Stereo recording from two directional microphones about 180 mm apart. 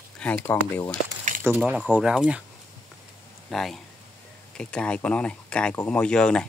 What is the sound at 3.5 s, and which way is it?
Speech, centre (ahead or behind).